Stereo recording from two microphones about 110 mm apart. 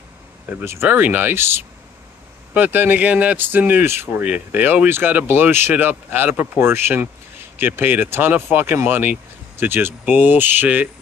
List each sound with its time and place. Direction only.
0.7 s speech: 20° right (ahead or behind)